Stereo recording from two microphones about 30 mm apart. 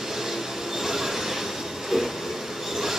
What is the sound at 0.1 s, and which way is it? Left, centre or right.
Train, centre.